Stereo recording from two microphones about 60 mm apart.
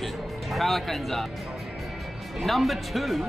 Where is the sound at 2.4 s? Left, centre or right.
Centre.